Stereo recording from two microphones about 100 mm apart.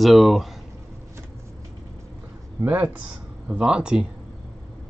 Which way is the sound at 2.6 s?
20° right (ahead or behind).